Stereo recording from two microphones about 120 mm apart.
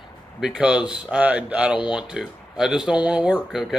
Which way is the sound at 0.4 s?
5° right (ahead or behind).